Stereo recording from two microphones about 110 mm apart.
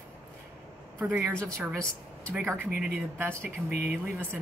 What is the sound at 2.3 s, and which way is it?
A woman's voice, 20° right (ahead or behind).